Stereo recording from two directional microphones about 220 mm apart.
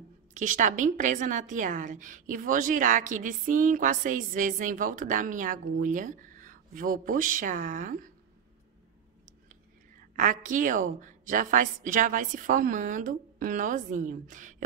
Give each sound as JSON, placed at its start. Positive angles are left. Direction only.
{"t": 0.3, "sound": "a woman's voice", "side_deg": -35}
{"t": 10.1, "sound": "a woman's voice", "side_deg": -35}